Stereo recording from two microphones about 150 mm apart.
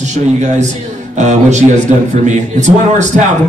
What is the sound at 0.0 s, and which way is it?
A man's voice, 50° right (ahead or behind).